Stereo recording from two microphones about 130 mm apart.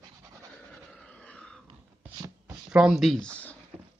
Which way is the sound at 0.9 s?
10° left (ahead or behind).